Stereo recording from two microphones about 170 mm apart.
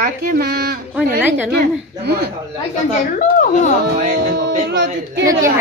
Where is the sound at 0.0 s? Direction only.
65° right (ahead or behind).